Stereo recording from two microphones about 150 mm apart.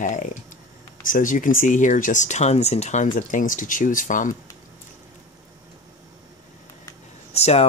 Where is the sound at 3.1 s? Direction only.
60° left (ahead or behind).